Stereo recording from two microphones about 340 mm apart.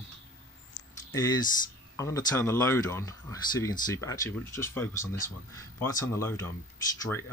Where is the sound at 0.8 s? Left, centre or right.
Left.